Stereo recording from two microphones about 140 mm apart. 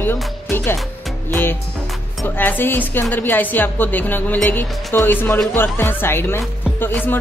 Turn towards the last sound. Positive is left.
turn(degrees=15)  # may be behind; listen again after turning